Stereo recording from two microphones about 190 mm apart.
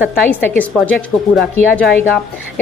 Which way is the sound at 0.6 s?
5° left (ahead or behind).